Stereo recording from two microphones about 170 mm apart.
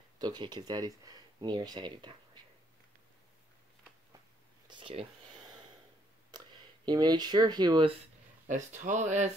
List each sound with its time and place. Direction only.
0.2 s speech: 25° right (ahead or behind)
4.6 s a sound: 30° right (ahead or behind)
6.3 s speech: 25° right (ahead or behind)
8.5 s speech: 45° right (ahead or behind)